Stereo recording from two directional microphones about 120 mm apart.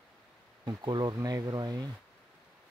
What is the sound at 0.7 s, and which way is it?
Speech, 40° right (ahead or behind).